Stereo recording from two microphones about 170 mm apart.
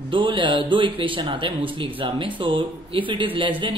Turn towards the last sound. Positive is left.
turn(degrees=-30)  # may be behind; listen again after turning